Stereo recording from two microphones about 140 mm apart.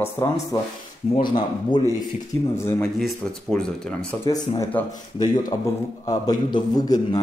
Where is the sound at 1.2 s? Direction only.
35° left (ahead or behind).